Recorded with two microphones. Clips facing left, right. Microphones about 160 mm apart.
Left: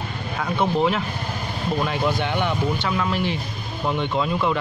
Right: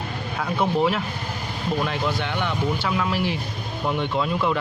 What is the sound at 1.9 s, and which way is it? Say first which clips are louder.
Speech: left 3 dB; 15° left (ahead or behind).